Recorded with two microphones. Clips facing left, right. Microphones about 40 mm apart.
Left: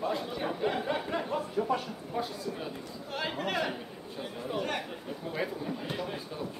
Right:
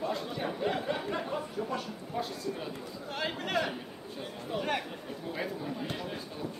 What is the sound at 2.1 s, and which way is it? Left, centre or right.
A man's voice, centre.